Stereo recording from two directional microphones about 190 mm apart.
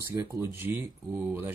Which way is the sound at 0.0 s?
15° right (ahead or behind).